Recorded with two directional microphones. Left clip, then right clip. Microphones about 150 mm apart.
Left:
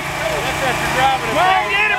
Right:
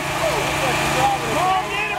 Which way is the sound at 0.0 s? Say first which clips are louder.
Left 1 dB; centre (ahead or behind).